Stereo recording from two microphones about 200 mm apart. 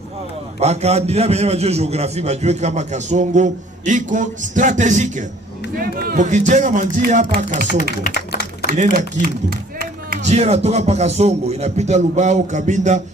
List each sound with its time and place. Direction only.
0.6 s a man's voice: 35° right (ahead or behind)
5.8 s a man's voice: 50° right (ahead or behind)